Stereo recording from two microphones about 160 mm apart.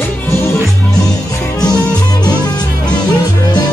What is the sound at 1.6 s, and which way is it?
Music, 25° left (ahead or behind).